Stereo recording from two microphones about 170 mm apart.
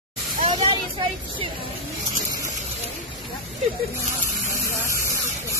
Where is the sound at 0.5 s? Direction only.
30° right (ahead or behind).